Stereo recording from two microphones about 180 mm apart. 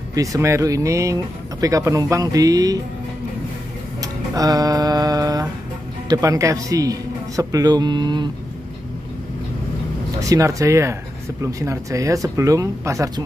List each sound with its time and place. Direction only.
0.1 s speech: 20° right (ahead or behind)
4.0 s a sound: 20° right (ahead or behind)
6.0 s speech: 20° right (ahead or behind)
10.2 s speech: 20° right (ahead or behind)